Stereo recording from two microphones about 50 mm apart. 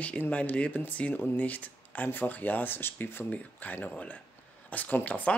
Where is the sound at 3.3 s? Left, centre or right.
Left.